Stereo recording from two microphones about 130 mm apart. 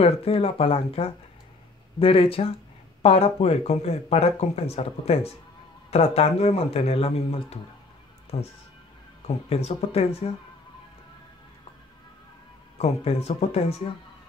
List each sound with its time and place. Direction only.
0.0 s speech: 45° left (ahead or behind)
12.7 s speech: 50° left (ahead or behind)